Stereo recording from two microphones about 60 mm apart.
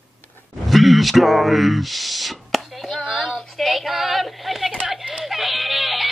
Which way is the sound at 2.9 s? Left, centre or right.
Left.